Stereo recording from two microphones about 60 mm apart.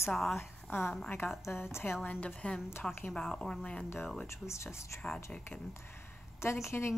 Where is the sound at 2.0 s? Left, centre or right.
Left.